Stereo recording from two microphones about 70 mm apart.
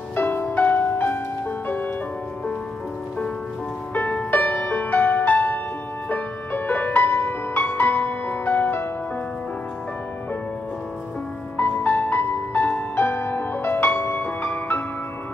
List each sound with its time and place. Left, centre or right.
0.1 s music: left
3.9 s music: left
11.5 s music: left